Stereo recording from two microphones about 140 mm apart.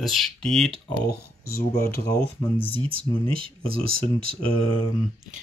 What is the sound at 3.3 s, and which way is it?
Speech, 40° right (ahead or behind).